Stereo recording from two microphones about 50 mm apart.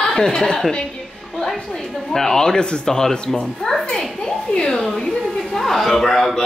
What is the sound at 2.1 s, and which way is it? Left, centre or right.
A child's voice, centre.